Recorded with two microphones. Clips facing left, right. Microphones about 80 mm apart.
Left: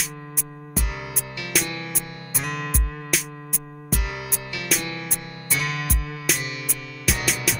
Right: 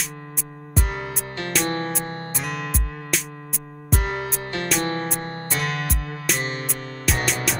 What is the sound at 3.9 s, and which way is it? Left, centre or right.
Music, right.